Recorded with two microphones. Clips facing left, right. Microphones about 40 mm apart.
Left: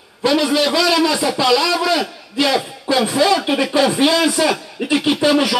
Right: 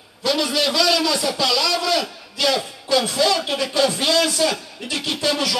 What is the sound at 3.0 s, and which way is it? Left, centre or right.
Speech, left.